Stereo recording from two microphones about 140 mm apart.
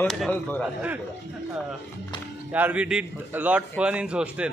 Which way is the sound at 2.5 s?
10° right (ahead or behind).